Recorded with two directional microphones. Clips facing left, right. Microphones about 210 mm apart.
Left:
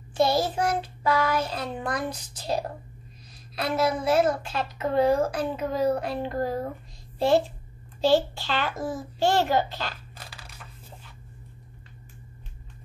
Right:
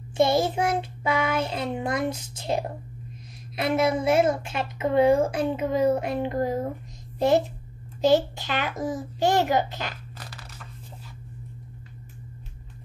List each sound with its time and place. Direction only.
0.1 s a child's voice: 25° right (ahead or behind)
10.1 s crunch: 10° left (ahead or behind)